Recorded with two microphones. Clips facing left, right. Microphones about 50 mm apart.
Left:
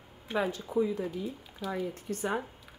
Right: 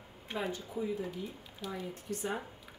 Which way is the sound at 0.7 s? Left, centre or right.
Left.